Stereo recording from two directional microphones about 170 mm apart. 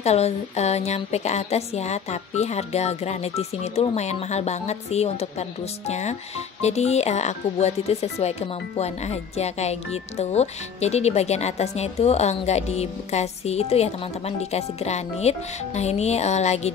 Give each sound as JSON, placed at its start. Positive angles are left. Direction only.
{"t": 0.0, "sound": "a woman's voice", "side_deg": 40}